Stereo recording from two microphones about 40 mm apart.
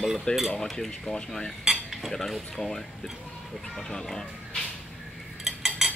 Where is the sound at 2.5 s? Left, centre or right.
Centre.